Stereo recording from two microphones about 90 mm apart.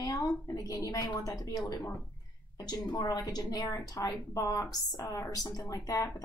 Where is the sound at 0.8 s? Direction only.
40° left (ahead or behind).